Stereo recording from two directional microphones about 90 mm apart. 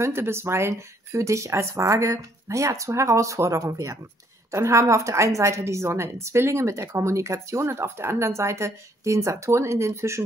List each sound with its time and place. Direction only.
0.0 s speech: 30° right (ahead or behind)